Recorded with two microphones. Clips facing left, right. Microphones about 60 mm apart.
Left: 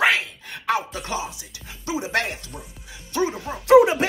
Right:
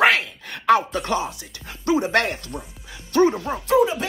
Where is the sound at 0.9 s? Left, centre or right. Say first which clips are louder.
Right 5 dB; centre.